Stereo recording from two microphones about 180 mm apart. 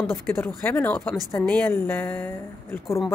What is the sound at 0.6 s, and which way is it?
Speech, 10° left (ahead or behind).